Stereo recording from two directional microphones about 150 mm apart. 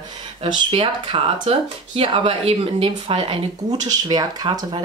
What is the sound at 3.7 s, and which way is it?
Speech, 25° right (ahead or behind).